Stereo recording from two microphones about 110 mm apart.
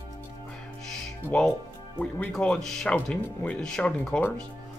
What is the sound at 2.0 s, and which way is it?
Speech, 10° left (ahead or behind).